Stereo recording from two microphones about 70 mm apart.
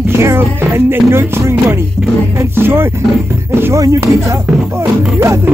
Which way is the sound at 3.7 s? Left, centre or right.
Right.